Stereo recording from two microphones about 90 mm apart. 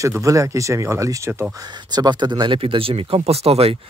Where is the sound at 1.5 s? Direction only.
50° right (ahead or behind); by 3.8 s 90° right.